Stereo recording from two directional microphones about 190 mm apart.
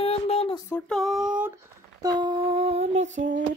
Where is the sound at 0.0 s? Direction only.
30° left (ahead or behind).